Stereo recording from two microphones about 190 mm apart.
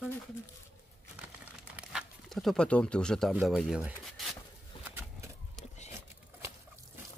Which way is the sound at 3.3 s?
5° right (ahead or behind).